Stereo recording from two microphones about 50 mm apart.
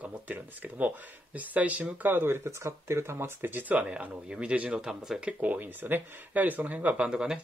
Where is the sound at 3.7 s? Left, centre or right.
Right.